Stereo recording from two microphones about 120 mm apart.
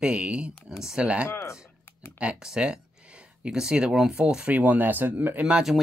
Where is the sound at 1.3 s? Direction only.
20° left (ahead or behind).